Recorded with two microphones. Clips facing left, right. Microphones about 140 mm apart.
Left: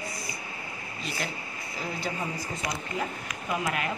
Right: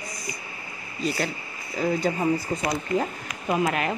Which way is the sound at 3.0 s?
30° right (ahead or behind).